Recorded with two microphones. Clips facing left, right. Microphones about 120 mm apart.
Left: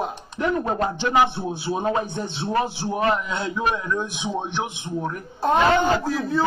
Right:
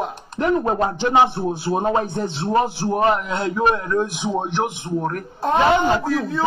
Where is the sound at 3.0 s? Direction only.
25° right (ahead or behind).